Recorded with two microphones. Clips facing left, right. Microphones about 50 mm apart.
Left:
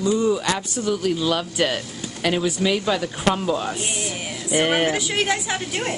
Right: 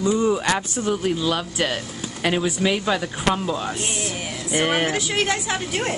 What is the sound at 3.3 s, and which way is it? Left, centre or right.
A woman's voice, centre.